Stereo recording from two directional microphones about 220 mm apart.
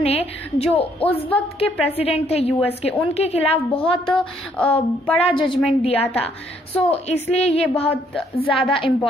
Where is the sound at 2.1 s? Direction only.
25° left (ahead or behind).